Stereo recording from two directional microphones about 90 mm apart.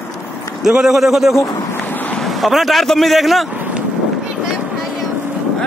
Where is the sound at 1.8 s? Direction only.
20° left (ahead or behind).